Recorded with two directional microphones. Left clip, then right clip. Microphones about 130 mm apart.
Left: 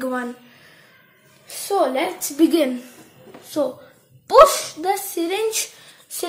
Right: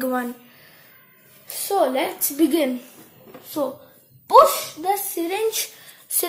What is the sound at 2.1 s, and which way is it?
Speech, 5° left (ahead or behind).